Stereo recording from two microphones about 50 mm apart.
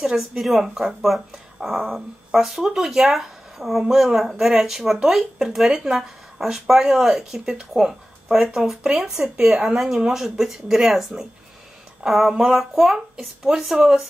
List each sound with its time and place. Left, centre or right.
0.0 s speech: centre
9.2 s speech: right
9.8 s speech: centre